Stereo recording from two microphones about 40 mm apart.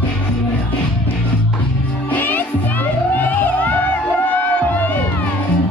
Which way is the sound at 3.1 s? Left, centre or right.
Left.